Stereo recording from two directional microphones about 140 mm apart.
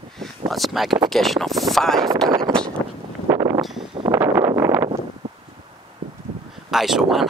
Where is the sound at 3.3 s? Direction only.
25° right (ahead or behind).